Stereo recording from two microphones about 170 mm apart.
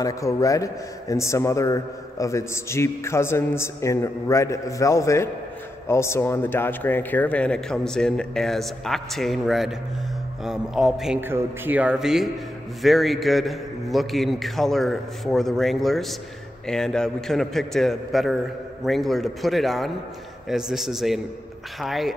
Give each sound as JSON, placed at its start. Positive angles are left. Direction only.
{"t": 0.0, "sound": "a man's voice", "side_deg": 20}